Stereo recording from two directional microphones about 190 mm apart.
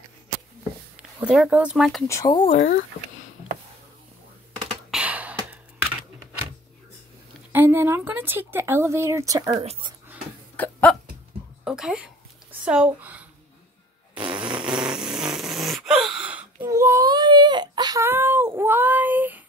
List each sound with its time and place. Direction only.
1.2 s speech: 5° right (ahead or behind)
2.0 s speech: 20° left (ahead or behind)
4.9 s beatboxing: 5° right (ahead or behind)
7.5 s speech: 10° right (ahead or behind)
9.6 s speech: 30° right (ahead or behind)
10.5 s a sound: 10° left (ahead or behind)
11.6 s a sound: 5° right (ahead or behind)
14.1 s fart: 5° right (ahead or behind)
14.6 s a sound: 5° right (ahead or behind)